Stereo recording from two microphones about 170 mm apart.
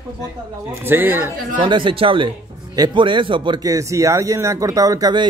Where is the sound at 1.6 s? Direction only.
30° right (ahead or behind).